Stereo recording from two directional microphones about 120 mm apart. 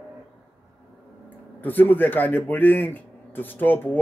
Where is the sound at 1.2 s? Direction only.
15° left (ahead or behind).